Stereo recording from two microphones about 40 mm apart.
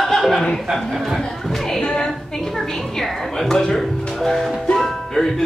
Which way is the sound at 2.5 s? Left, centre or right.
Centre.